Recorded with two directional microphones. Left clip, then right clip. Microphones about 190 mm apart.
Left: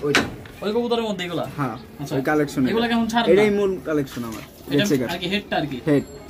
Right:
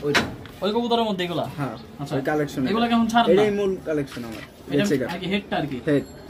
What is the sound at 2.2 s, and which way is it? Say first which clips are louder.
Speech: left 4 dB; 40° left (ahead or behind).